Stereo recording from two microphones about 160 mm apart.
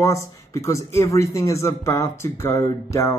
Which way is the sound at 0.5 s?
20° left (ahead or behind).